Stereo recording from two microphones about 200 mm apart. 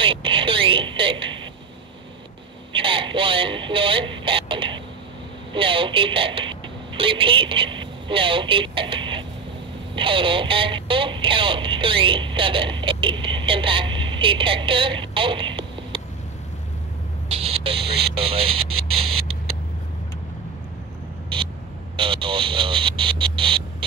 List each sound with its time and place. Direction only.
0.0 s a sound: 25° right (ahead or behind)
2.7 s radio: 25° right (ahead or behind)
5.5 s speech: 25° right (ahead or behind)
17.3 s speech: 30° right (ahead or behind)
21.9 s speech: 25° right (ahead or behind)